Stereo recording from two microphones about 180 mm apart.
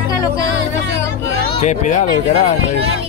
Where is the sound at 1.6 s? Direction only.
40° left (ahead or behind).